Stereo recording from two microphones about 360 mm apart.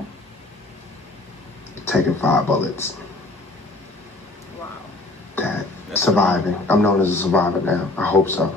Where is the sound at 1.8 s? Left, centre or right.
Centre.